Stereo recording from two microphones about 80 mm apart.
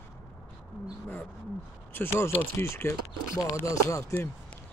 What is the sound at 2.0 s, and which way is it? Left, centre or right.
Speech, left.